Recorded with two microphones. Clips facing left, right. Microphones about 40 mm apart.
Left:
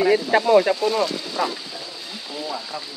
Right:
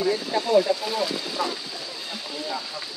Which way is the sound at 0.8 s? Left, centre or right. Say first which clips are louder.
Left 6 dB; centre.